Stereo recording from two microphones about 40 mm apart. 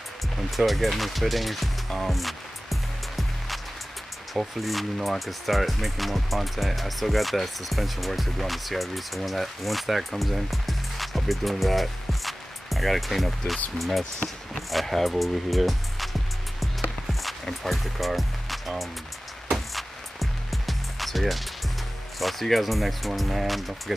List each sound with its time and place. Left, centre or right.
0.5 s music: centre
4.6 s speech: centre
14.7 s music: centre
22.2 s speech: centre